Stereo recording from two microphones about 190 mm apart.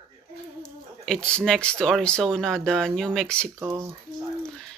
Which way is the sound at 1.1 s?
5° left (ahead or behind).